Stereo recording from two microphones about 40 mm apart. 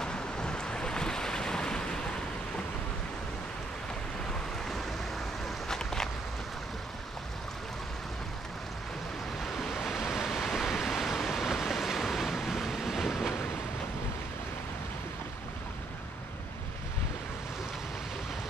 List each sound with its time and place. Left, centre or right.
0.0 s waves: left
4.3 s waves: centre
5.7 s a sound: centre
9.4 s waves: centre